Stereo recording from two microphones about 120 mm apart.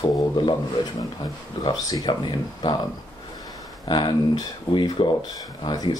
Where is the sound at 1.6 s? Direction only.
40° left (ahead or behind).